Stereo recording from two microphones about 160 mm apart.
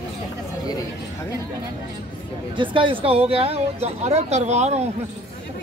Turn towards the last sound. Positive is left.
turn(degrees=-45)  # may be behind; listen again after turning